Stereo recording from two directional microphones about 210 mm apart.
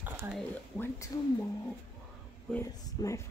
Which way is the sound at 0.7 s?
10° left (ahead or behind).